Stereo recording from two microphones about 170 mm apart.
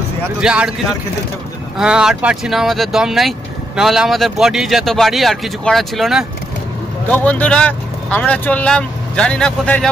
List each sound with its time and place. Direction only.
0.4 s speech: 5° right (ahead or behind)
1.8 s speech: 5° right (ahead or behind)